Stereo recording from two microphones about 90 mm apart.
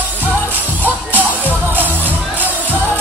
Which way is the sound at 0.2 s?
20° right (ahead or behind).